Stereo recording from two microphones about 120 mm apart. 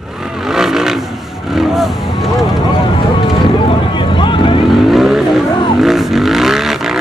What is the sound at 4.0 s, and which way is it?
Vehicle, 45° left (ahead or behind).